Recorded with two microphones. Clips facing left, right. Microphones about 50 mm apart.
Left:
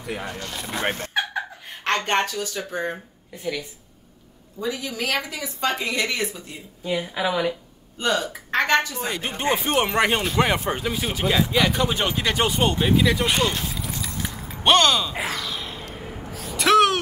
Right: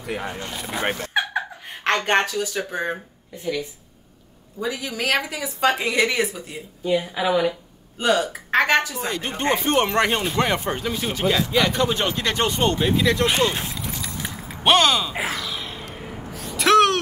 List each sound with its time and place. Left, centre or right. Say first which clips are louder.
0.0 s speech: right 2 dB; centre
0.3 s a woman's voice: right 1 dB; right
0.6 s a woman's voice: right 1 dB; centre
2.7 s a woman's voice: right 1 dB; right
4.6 s a woman's voice: even; right
5.0 s a woman's voice: right 4 dB; centre
6.8 s a woman's voice: right 3 dB; centre
9.0 s speech: right 1 dB; centre
13.7 s keys jangling: even; centre
14.6 s speech: even; centre
15.9 s gasp: even; centre